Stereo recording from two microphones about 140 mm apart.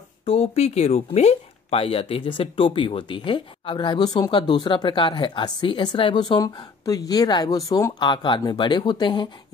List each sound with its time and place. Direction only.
0.2 s speech: 45° left (ahead or behind)